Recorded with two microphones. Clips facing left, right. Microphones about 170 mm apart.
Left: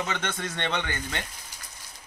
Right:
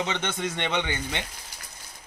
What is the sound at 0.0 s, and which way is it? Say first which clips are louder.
Speech: right 2 dB; 20° right (ahead or behind).